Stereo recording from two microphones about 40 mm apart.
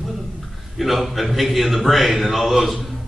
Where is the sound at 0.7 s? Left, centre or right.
Centre.